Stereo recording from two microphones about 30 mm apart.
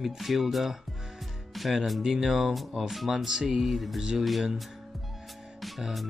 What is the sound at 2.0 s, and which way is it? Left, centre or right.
Speech, centre.